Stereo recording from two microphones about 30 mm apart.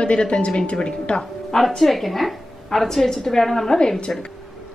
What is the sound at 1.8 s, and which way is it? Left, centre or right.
A woman's voice, centre.